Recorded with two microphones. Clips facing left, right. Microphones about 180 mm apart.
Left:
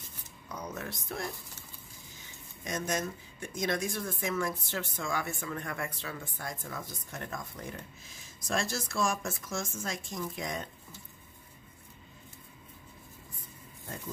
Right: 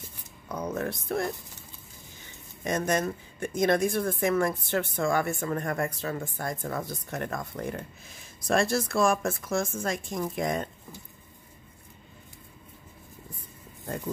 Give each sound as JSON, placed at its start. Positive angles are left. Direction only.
{"t": 0.5, "sound": "speech", "side_deg": -50}
{"t": 2.6, "sound": "speech", "side_deg": -60}